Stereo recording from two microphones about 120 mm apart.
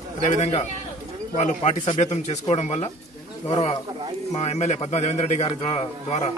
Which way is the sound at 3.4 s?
55° left (ahead or behind).